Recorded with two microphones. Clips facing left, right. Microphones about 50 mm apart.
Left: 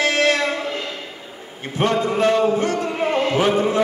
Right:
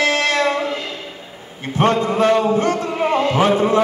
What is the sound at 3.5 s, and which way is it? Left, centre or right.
Music, right.